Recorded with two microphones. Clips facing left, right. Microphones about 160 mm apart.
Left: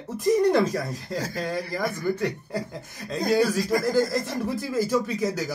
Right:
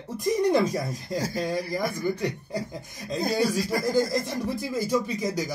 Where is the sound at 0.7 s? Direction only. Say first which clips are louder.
Even; 10° right (ahead or behind).